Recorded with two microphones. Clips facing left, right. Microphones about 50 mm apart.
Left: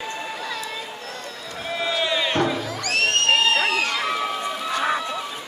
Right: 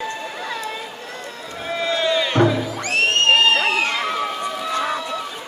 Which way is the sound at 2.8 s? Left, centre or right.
Right.